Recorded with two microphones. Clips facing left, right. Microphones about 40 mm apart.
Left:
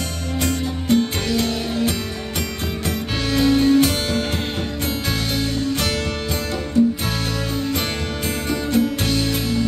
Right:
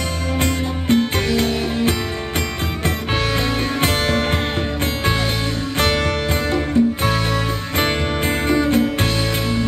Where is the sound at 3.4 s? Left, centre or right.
Right.